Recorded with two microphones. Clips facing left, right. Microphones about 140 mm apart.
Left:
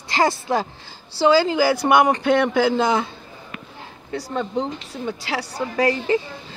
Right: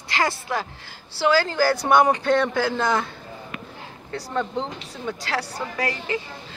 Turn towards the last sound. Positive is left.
turn(degrees=25)  # may be behind; listen again after turning